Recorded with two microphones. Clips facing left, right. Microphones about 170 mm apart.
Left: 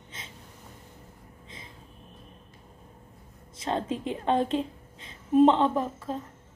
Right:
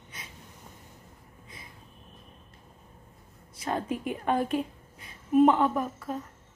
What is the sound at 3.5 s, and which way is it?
A woman's voice, 25° left (ahead or behind).